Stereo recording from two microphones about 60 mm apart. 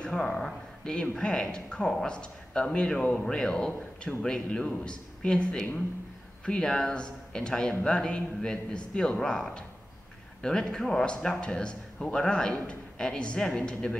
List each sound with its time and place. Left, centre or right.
0.0 s speech: centre